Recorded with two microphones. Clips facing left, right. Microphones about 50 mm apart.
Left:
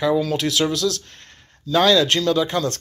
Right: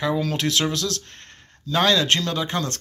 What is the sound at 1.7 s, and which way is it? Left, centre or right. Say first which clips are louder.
Speech: left 3 dB; right.